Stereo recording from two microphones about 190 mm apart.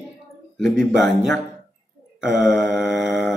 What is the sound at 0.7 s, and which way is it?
Speech, centre (ahead or behind).